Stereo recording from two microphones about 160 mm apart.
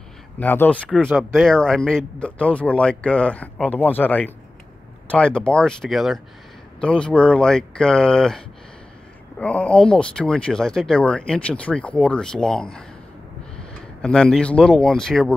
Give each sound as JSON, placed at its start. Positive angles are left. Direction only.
{"t": 0.4, "sound": "speech", "side_deg": 10}
{"t": 0.8, "sound": "speech", "side_deg": -10}
{"t": 1.3, "sound": "speech", "side_deg": 5}
{"t": 14.0, "sound": "speech", "side_deg": 5}